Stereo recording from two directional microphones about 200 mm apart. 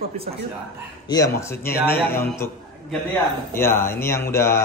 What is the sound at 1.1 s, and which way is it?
Speech, 15° left (ahead or behind).